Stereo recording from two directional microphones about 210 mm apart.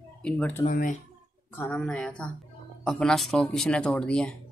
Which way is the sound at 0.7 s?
40° left (ahead or behind).